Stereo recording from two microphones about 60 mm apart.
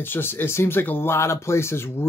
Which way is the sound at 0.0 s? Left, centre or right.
Left.